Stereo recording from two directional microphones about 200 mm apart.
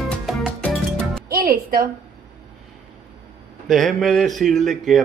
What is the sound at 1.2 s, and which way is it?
Music, 50° right (ahead or behind).